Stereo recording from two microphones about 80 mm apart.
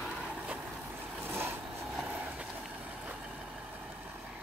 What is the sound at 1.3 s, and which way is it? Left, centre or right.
Vehicle, right.